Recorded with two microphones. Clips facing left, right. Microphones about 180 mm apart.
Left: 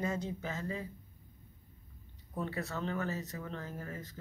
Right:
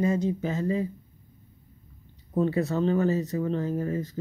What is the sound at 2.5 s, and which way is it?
Speech, 20° right (ahead or behind).